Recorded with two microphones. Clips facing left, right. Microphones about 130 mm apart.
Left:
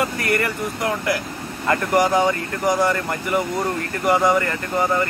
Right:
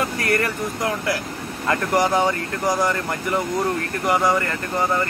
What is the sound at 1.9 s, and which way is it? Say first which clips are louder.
Speech: left 2 dB; 15° left (ahead or behind).